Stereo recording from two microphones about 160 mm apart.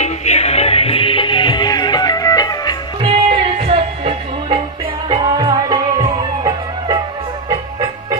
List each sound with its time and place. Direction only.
0.0 s music: 45° left (ahead or behind); by 2.8 s 25° left (ahead or behind)
3.0 s music: 35° right (ahead or behind)
5.0 s music: 25° right (ahead or behind)